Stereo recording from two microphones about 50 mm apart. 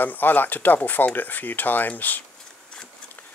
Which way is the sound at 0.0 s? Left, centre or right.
Left.